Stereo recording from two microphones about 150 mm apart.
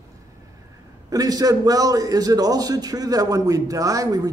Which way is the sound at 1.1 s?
25° right (ahead or behind).